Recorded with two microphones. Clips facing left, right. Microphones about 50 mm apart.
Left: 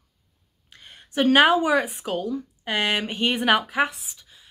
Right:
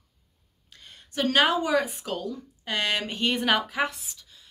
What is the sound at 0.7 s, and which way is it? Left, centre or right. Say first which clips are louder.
A woman's voice: left 6 dB; left.